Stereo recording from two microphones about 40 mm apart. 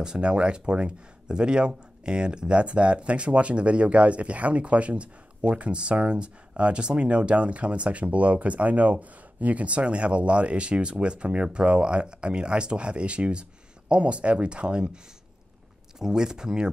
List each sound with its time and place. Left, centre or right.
0.0 s speech: right
16.0 s speech: centre